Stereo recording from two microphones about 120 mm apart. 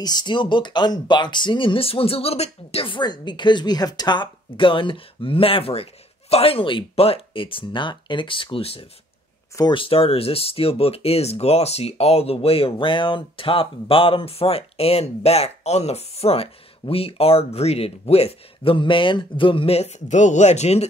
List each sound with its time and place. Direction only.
0.0 s speech: 35° left (ahead or behind); by 20.8 s 70° left (ahead or behind)